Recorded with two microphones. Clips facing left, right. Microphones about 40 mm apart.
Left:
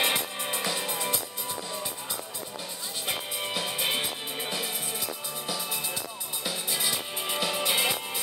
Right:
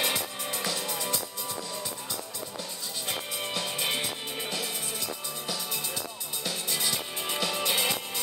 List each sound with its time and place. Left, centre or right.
0.0 s music: left
3.1 s music: centre
6.4 s music: centre